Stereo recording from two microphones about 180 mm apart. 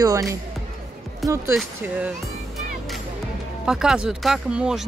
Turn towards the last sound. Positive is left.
turn(degrees=-5)  # may be behind; listen again after turning